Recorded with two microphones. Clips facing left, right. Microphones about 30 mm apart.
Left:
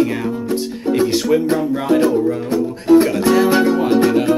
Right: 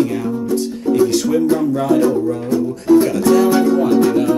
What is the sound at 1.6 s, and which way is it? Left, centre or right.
Music, left.